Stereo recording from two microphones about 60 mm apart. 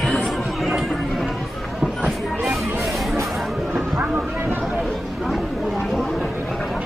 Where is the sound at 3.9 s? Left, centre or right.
Right.